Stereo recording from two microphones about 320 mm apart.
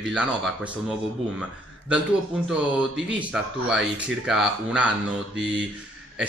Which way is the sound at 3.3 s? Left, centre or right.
Centre.